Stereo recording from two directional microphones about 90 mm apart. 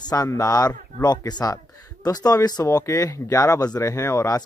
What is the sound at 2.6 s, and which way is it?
Speech, 35° left (ahead or behind).